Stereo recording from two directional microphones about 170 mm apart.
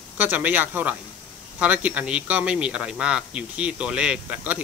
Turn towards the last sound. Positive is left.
turn(degrees=-10)  # may be behind; listen again after turning